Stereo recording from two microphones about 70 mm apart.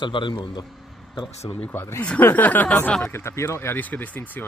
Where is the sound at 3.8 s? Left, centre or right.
Left.